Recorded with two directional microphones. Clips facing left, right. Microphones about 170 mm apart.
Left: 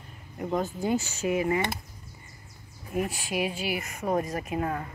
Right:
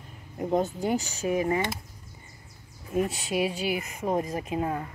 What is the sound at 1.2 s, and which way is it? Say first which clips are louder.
Speech: right 1 dB; 35° right (ahead or behind).